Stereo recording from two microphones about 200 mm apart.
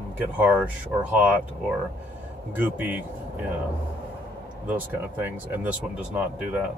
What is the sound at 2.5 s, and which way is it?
Speech, 10° right (ahead or behind).